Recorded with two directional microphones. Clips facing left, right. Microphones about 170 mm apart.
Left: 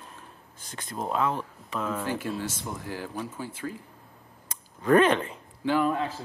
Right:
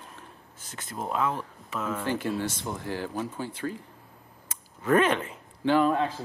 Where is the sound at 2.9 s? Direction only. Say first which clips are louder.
Right 4 dB; 25° right (ahead or behind).